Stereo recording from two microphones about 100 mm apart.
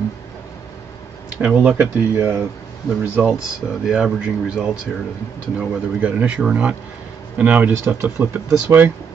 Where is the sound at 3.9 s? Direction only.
10° right (ahead or behind).